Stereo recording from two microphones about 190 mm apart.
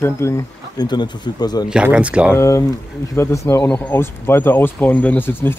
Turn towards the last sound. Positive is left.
turn(degrees=10)  # may be behind; listen again after turning